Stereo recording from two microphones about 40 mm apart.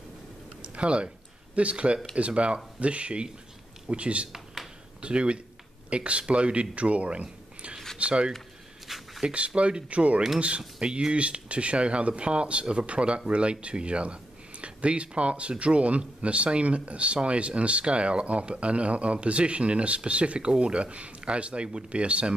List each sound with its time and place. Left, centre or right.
0.6 s a sound: right
2.1 s speech: right
8.8 s a sound: centre
9.2 s speech: right
10.8 s speech: right
11.1 s speech: right